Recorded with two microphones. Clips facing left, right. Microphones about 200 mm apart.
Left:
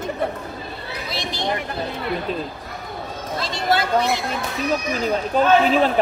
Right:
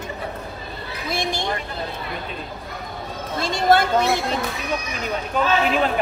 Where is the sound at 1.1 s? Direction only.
50° right (ahead or behind).